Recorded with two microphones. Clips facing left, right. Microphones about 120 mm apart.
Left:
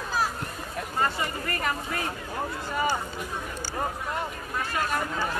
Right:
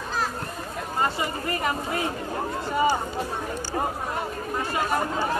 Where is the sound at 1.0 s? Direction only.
20° right (ahead or behind).